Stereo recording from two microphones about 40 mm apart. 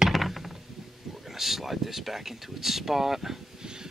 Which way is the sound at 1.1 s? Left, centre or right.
Centre.